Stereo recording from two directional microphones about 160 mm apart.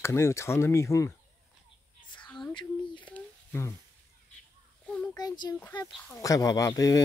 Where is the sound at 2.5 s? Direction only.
30° left (ahead or behind).